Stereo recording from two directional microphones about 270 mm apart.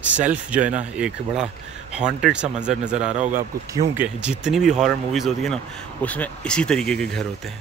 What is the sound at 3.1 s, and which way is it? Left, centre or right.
Speech, right.